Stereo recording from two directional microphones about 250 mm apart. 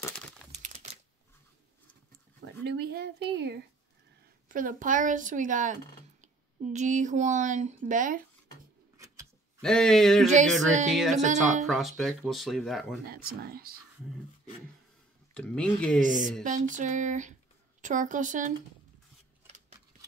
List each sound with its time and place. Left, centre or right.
2.4 s speech: right
4.5 s a woman's voice: right
9.6 s speech: centre
10.2 s speech: right
10.9 s speech: centre
13.1 s a woman's voice: right
15.3 s speech: centre
16.0 s a woman's voice: right